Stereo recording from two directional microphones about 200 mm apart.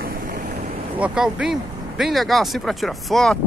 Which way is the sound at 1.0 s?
5° right (ahead or behind).